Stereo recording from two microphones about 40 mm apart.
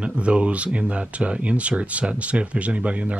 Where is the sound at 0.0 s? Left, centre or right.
Right.